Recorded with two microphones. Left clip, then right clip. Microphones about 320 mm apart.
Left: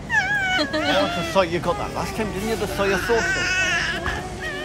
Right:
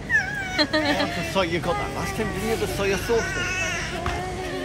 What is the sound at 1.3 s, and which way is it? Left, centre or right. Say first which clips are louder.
Speech: left 4 dB; left.